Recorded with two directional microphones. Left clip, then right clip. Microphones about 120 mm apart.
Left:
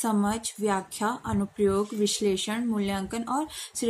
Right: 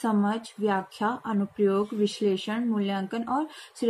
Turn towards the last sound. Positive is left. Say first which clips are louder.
# right 1 dB
turn(degrees=5)  # may be behind; listen again after turning